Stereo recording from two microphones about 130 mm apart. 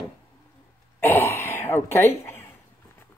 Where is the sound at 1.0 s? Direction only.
15° left (ahead or behind).